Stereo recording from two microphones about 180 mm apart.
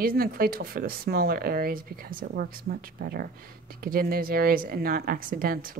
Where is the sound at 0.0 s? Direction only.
55° right (ahead or behind).